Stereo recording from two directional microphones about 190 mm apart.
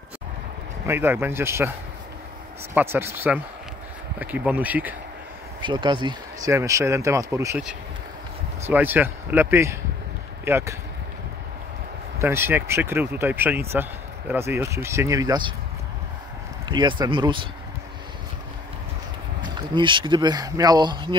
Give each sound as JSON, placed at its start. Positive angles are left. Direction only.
{"t": 0.8, "sound": "speech", "side_deg": -10}
{"t": 2.7, "sound": "speech", "side_deg": -10}
{"t": 5.6, "sound": "speech", "side_deg": -25}
{"t": 12.2, "sound": "speech", "side_deg": -10}
{"t": 16.6, "sound": "speech", "side_deg": -25}
{"t": 19.4, "sound": "speech", "side_deg": -25}